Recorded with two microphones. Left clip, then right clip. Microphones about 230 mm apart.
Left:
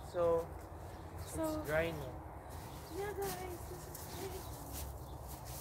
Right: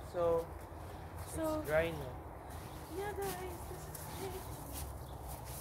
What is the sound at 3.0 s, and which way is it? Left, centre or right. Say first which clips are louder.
Speech: even; centre.